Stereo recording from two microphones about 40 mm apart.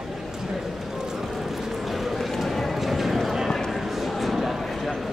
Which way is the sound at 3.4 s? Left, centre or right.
Centre.